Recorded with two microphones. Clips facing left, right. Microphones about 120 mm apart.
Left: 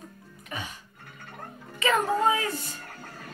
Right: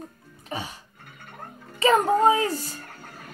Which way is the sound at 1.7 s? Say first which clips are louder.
Right 5 dB; 35° right (ahead or behind).